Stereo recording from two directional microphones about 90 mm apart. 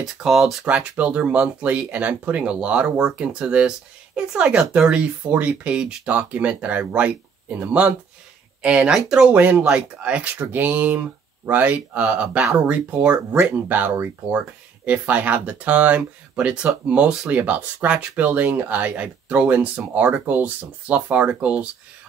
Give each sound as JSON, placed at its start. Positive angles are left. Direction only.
{"t": 0.0, "sound": "speech", "side_deg": -5}
{"t": 0.7, "sound": "speech", "side_deg": -15}